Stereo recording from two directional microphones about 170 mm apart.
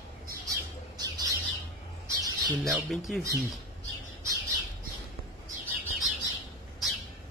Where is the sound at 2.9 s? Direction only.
Centre (ahead or behind).